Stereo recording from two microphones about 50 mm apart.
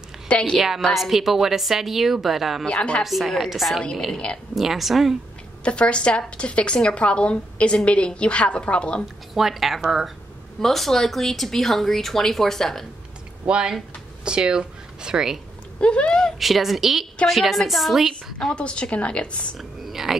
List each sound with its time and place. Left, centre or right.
0.3 s a woman's voice: centre
0.7 s speech: centre
2.6 s a woman's voice: left
3.0 s speech: centre
4.1 s a woman's voice: left
4.6 s speech: centre
5.6 s a woman's voice: left
9.3 s speech: centre
10.6 s speech: centre
13.5 s speech: centre
15.8 s a woman's voice: left
16.2 s speech: centre
18.5 s a woman's voice: left
19.5 s speech: centre